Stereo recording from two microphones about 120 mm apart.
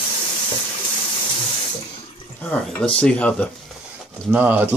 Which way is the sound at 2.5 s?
10° left (ahead or behind).